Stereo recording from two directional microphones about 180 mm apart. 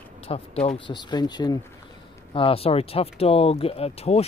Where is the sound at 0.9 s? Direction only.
25° left (ahead or behind).